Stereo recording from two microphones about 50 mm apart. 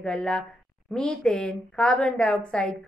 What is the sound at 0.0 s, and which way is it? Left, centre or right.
A woman's voice, centre.